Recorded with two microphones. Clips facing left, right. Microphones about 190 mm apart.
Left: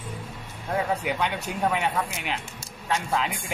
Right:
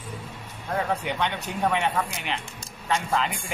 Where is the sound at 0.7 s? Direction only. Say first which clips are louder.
Left 1 dB; 5° left (ahead or behind).